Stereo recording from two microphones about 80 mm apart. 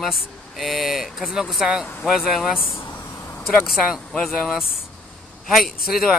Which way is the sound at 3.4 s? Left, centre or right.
Centre.